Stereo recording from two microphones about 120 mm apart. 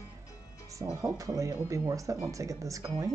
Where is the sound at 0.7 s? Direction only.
25° right (ahead or behind).